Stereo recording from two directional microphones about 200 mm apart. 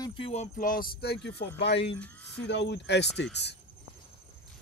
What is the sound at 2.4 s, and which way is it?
Speech, 60° left (ahead or behind).